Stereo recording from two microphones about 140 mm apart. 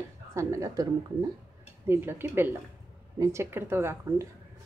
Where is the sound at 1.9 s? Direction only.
15° right (ahead or behind).